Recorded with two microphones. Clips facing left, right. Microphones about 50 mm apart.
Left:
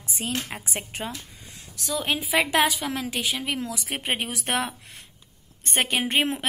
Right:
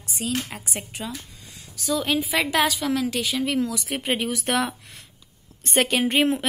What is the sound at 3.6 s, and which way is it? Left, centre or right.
Speech, left.